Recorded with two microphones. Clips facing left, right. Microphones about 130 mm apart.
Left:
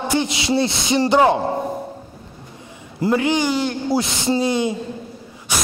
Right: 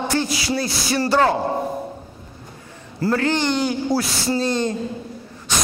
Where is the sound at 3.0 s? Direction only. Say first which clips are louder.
Left 2 dB; 15° left (ahead or behind).